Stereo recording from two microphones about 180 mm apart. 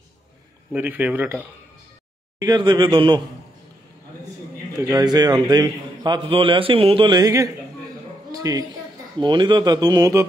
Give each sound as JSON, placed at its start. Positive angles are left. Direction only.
{"t": 0.7, "sound": "speech", "side_deg": -10}
{"t": 2.3, "sound": "a man's voice", "side_deg": -20}
{"t": 4.7, "sound": "a man's voice", "side_deg": -20}